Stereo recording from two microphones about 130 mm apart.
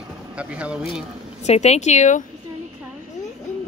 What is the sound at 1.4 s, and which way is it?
Speech, 55° left (ahead or behind).